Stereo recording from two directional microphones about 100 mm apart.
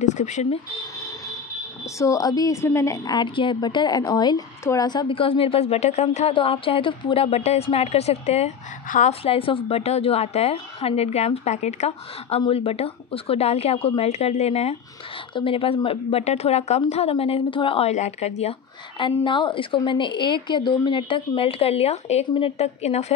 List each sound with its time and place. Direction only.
0.2 s a woman's voice: 90° left
2.0 s a woman's voice: 35° left (ahead or behind)
3.1 s a woman's voice: 50° left (ahead or behind)
5.1 s speech: 65° left (ahead or behind)
7.2 s a woman's voice: 90° left
9.2 s a woman's voice: 65° left (ahead or behind); by 14.8 s 90° left
15.3 s a woman's voice: 65° left (ahead or behind); by 18.5 s 90° left
18.9 s a woman's voice: 55° left (ahead or behind); by 23.1 s 90° left